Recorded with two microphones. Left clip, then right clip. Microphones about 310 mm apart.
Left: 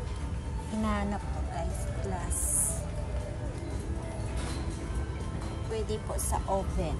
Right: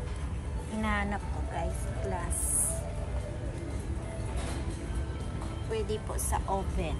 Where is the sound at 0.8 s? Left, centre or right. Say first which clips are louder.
Right 1 dB; centre.